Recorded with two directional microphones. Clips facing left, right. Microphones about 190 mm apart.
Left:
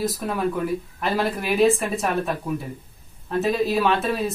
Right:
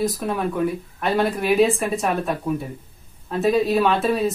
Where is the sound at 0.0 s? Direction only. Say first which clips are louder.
Right 1 dB; centre (ahead or behind).